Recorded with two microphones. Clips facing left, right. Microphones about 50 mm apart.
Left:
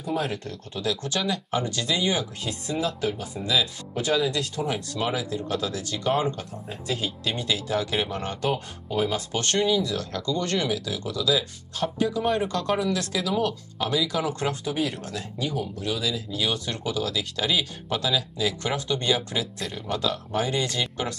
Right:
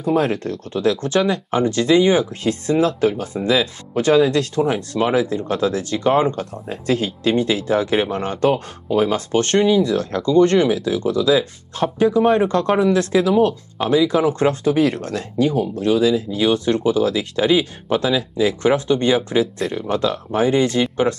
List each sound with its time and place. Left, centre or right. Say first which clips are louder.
0.0 s speech: right 10 dB; right
2.6 s speech: right 10 dB; right
7.3 s speech: right 9 dB; right
14.5 s speech: right 10 dB; right